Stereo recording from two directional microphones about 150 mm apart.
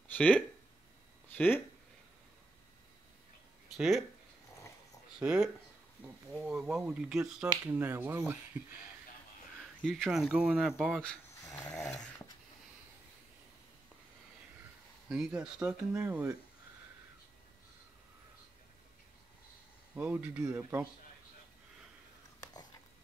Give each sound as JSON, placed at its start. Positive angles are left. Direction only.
{"t": 0.1, "sound": "a sound", "side_deg": 10}
{"t": 1.3, "sound": "speech", "side_deg": 10}
{"t": 3.7, "sound": "speech", "side_deg": 0}
{"t": 5.2, "sound": "speech", "side_deg": -5}
{"t": 9.8, "sound": "speech", "side_deg": 0}
{"t": 11.4, "sound": "snoring", "side_deg": 20}
{"t": 15.0, "sound": "speech", "side_deg": -5}
{"t": 20.0, "sound": "speech", "side_deg": -10}